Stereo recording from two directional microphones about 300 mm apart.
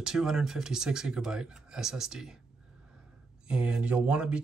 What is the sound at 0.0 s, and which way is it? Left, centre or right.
Speech, centre.